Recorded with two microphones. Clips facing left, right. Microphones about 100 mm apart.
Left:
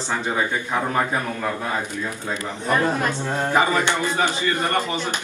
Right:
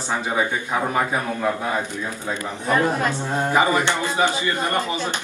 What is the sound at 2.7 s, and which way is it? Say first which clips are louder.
A man's voice: right 1 dB; 15° right (ahead or behind).